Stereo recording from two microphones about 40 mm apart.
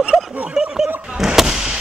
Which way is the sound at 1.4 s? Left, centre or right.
Centre.